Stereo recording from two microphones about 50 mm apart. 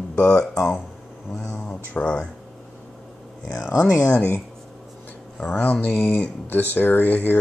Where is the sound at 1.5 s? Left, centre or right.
Left.